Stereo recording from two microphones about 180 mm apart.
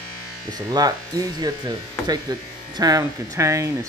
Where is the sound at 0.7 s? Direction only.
20° right (ahead or behind).